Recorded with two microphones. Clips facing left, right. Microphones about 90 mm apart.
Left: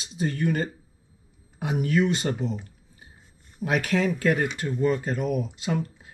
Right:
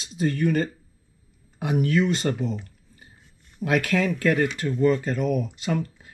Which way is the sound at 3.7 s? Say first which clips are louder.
Right 1 dB; 15° left (ahead or behind).